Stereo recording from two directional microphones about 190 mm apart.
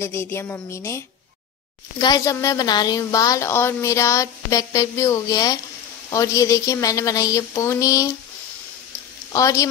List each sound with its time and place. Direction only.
0.0 s a woman's voice: 15° left (ahead or behind)
9.3 s a woman's voice: 15° left (ahead or behind)